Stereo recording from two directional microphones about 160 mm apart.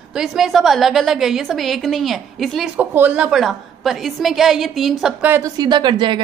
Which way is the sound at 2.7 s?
10° right (ahead or behind).